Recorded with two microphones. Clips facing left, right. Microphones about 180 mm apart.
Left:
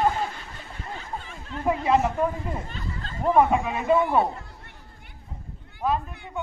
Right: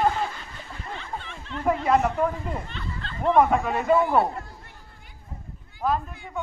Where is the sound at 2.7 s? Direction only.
40° left (ahead or behind).